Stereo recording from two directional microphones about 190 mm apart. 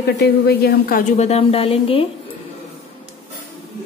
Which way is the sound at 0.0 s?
55° left (ahead or behind).